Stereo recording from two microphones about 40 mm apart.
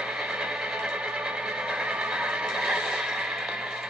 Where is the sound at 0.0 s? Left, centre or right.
Centre.